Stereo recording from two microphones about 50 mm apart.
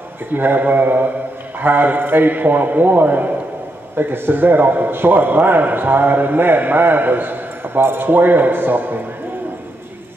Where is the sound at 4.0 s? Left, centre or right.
Right.